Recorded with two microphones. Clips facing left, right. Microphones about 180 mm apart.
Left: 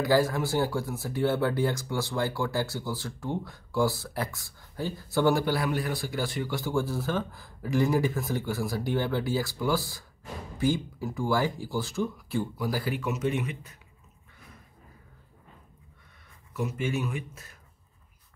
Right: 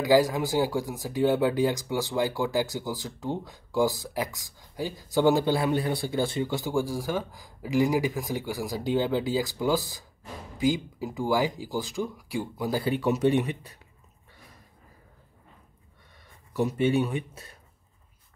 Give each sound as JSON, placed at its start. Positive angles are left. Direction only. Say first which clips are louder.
{"t": 0.0, "sound": "speech", "louder": "right 3 dB", "side_deg": -15}
{"t": 16.5, "sound": "speech", "louder": "right 6 dB", "side_deg": -35}